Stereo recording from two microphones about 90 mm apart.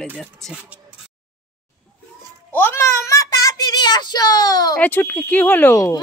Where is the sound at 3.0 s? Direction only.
40° left (ahead or behind).